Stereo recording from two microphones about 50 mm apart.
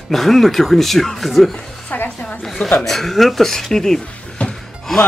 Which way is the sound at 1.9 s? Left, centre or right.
Left.